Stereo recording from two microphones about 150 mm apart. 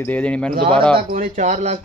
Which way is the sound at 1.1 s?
60° right (ahead or behind).